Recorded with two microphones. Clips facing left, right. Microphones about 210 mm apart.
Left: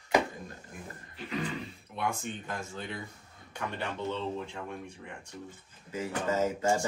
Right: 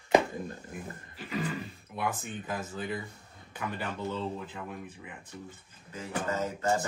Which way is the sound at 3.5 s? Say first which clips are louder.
Even; 5° right (ahead or behind).